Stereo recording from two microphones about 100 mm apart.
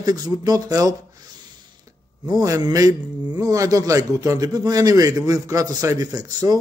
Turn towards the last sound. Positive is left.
turn(degrees=-40)  # may be behind; listen again after turning